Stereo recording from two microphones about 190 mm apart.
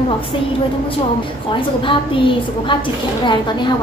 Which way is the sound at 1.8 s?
25° left (ahead or behind).